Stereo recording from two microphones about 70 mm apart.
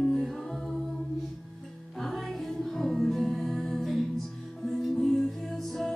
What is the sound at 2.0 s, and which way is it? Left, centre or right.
Music, centre.